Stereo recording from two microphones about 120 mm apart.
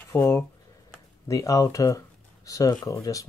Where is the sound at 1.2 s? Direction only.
30° left (ahead or behind).